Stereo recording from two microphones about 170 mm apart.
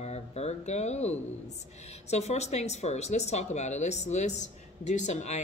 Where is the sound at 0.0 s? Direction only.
40° left (ahead or behind).